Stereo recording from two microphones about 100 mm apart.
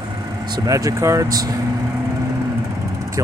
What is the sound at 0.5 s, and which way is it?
Speech, 40° right (ahead or behind).